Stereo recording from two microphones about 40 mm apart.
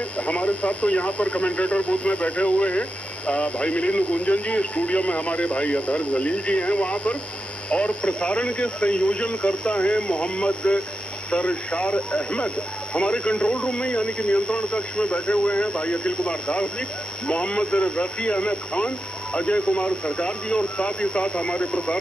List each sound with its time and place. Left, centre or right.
0.3 s speech: left